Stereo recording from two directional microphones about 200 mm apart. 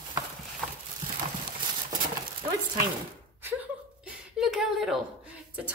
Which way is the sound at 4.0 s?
Centre (ahead or behind).